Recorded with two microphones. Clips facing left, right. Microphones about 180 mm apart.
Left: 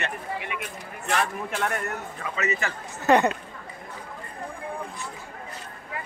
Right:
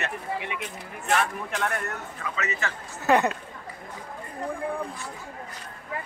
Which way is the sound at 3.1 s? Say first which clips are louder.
Left 2 dB; 5° right (ahead or behind).